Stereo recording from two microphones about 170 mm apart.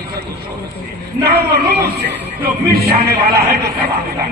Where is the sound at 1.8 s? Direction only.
70° right (ahead or behind).